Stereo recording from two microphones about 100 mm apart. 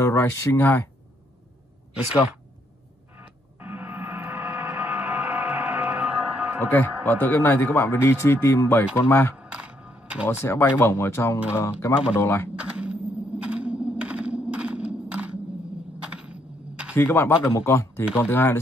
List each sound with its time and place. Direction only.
0.0 s speech: 30° left (ahead or behind)
3.2 s music: 20° right (ahead or behind)
6.7 s a man's voice: 20° left (ahead or behind)
9.4 s a sound: 10° right (ahead or behind)
10.4 s a man's voice: 25° left (ahead or behind)
12.5 s a sound: 10° right (ahead or behind)
16.9 s a man's voice: 25° left (ahead or behind)